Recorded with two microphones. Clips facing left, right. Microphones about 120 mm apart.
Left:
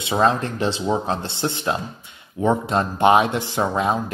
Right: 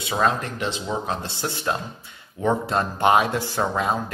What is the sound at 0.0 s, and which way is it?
Speech, 25° left (ahead or behind).